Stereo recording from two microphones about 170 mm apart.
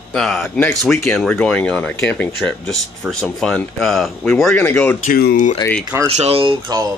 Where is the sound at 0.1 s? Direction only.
5° left (ahead or behind).